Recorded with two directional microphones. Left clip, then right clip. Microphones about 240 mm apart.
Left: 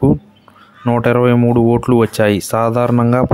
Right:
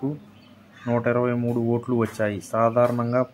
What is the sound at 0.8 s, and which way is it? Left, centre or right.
Speech, left.